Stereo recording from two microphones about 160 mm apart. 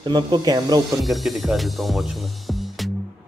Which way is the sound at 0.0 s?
30° right (ahead or behind).